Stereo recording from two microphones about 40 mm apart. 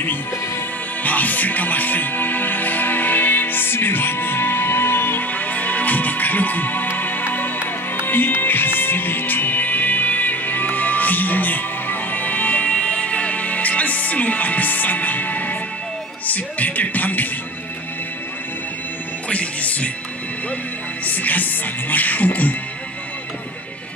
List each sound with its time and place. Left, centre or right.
1.0 s music: left
5.2 s music: left
8.0 s music: left
12.7 s music: left
16.3 s speech: left
19.2 s music: left
21.0 s speech: left